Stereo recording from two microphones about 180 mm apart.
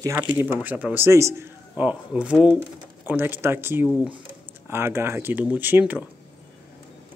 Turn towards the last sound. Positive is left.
turn(degrees=-10)  # may be behind; listen again after turning